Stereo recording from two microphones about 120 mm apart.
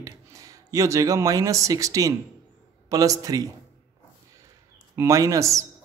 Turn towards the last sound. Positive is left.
turn(degrees=-25)  # may be behind; listen again after turning